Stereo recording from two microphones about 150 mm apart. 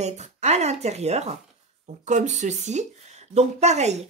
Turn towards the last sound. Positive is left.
turn(degrees=-50)  # may be behind; listen again after turning